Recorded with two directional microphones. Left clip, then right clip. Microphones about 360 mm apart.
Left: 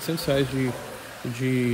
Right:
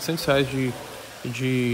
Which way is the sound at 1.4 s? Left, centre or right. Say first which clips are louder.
Right 1 dB; centre.